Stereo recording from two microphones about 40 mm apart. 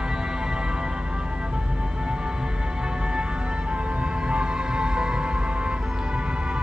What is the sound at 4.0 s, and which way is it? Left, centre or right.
Music, right.